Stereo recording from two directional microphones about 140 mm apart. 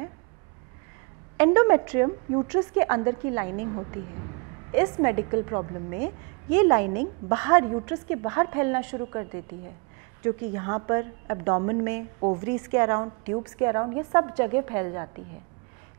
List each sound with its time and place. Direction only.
1.4 s a woman's voice: 20° right (ahead or behind)